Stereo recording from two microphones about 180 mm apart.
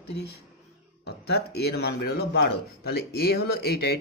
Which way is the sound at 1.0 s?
65° left (ahead or behind).